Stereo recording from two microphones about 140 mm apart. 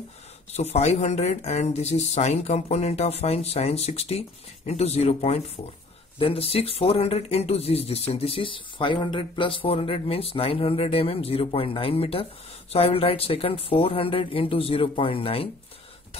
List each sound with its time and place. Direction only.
0.5 s speech: 50° left (ahead or behind)